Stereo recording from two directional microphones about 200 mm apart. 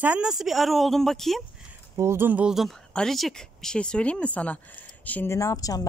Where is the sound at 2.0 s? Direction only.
10° right (ahead or behind).